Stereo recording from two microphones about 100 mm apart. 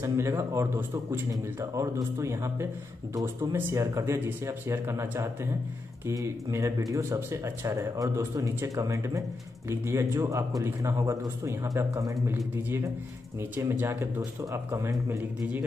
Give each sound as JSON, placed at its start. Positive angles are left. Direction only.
{"t": 0.0, "sound": "speech", "side_deg": -25}
{"t": 1.3, "sound": "speech", "side_deg": -35}
{"t": 12.3, "sound": "speech", "side_deg": -20}